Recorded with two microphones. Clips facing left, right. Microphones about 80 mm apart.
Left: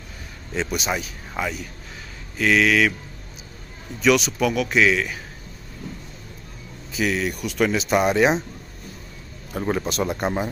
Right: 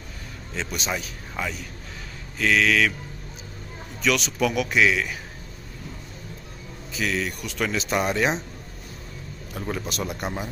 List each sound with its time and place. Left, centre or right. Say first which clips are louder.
0.6 s speech: left 4 dB; centre
4.0 s speech: left 6 dB; centre
4.4 s a man's voice: left 2 dB; centre
7.0 s speech: left 4 dB; centre
9.6 s speech: left 6 dB; left